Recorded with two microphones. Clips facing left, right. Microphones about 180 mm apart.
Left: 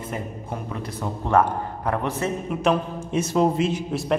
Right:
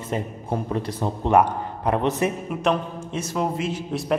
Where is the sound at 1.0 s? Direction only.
20° right (ahead or behind).